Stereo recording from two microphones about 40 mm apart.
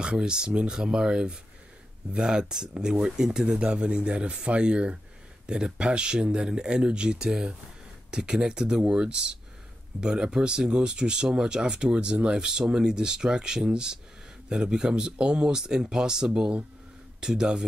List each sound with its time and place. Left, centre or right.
0.0 s speech: right
3.5 s speech: right